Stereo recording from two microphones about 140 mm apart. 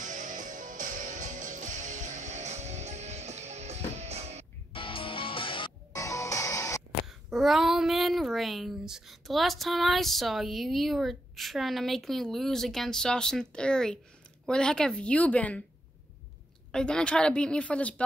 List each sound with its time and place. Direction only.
0.0 s music: 65° right (ahead or behind)
4.7 s music: 40° left (ahead or behind)
5.9 s music: 20° left (ahead or behind)
7.1 s speech: centre (ahead or behind)
16.7 s speech: 5° left (ahead or behind)